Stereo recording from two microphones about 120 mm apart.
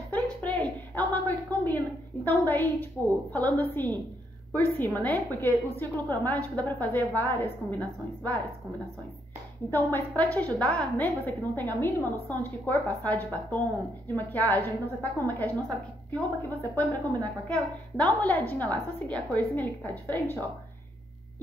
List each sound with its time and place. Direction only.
0.1 s a sound: 10° left (ahead or behind)
2.2 s a woman's voice: 15° left (ahead or behind)
9.7 s a woman's voice: 15° left (ahead or behind)